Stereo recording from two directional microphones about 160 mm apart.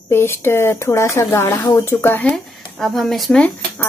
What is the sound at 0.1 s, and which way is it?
Speech, 15° left (ahead or behind).